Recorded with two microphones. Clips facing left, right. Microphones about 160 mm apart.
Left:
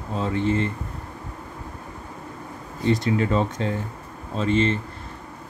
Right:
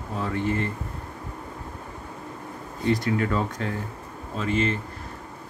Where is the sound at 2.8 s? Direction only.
25° left (ahead or behind).